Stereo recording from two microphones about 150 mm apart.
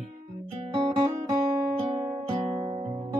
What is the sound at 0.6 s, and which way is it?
Music, 35° right (ahead or behind).